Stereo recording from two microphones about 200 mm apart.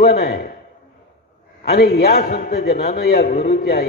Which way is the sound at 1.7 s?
50° left (ahead or behind).